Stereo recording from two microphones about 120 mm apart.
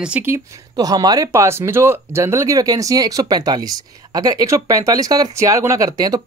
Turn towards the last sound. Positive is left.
turn(degrees=-30)  # may be behind; listen again after turning